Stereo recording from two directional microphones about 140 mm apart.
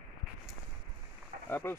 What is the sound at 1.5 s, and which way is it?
Speech, 15° left (ahead or behind).